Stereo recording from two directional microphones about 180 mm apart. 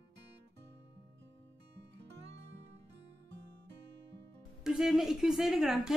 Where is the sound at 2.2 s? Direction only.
75° right (ahead or behind).